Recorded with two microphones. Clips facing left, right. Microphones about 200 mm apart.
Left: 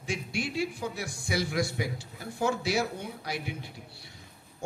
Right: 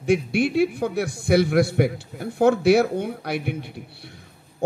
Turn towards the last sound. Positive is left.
turn(degrees=-60)  # may be behind; listen again after turning